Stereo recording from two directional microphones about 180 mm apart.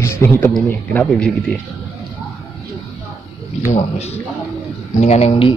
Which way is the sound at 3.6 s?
35° left (ahead or behind).